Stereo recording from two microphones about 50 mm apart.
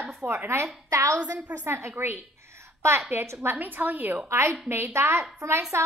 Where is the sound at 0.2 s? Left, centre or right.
Right.